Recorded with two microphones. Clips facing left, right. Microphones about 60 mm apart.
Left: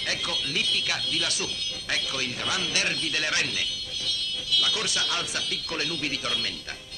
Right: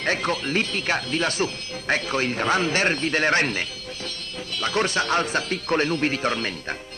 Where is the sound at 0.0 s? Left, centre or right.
Right.